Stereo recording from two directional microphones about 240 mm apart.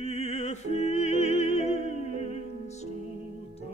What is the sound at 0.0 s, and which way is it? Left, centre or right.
Music, left.